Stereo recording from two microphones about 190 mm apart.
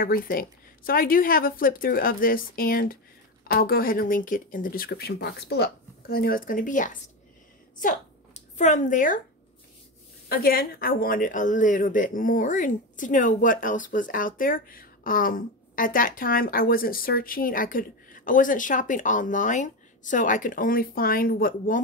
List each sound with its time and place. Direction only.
0.0 s speech: 50° left (ahead or behind)
10.2 s speech: 50° left (ahead or behind)